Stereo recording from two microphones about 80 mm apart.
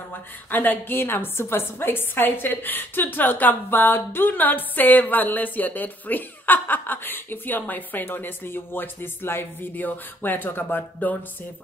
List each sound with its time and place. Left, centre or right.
0.5 s a woman's voice: left